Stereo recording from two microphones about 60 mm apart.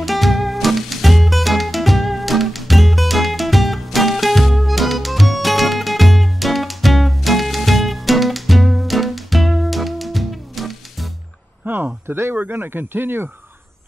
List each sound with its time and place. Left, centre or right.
0.0 s music: centre
11.6 s a sound: right
12.4 s speech: right